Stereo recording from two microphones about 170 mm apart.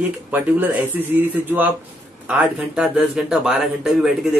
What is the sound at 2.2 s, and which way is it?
Speech, 5° right (ahead or behind).